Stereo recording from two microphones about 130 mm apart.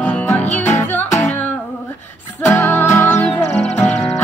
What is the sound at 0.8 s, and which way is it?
Music, 65° left (ahead or behind).